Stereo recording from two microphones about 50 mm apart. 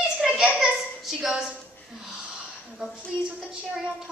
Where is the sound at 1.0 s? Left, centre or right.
Centre.